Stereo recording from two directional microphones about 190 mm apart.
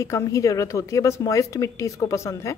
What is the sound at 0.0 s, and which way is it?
Speech, 15° left (ahead or behind).